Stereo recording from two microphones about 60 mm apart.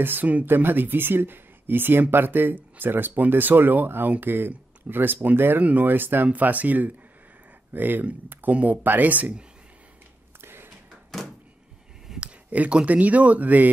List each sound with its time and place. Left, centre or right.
0.0 s speech: right
10.4 s a sound: right
12.2 s speech: right